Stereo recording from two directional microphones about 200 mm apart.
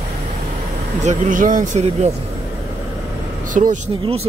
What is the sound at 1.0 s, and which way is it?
Speech, 40° right (ahead or behind).